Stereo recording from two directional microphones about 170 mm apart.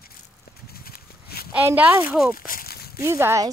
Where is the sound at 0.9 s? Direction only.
65° left (ahead or behind).